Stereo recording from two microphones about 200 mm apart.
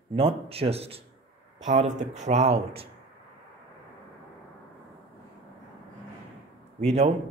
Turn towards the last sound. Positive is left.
turn(degrees=-35)  # may be behind; listen again after turning